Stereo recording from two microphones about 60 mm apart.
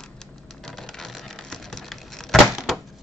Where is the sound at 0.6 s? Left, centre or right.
Centre.